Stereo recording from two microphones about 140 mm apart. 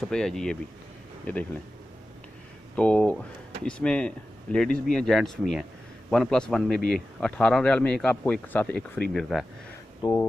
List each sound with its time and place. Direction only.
0.0 s speech: 5° left (ahead or behind)
2.7 s speech: 10° left (ahead or behind)
9.1 s speech: centre (ahead or behind)
10.0 s speech: 35° left (ahead or behind)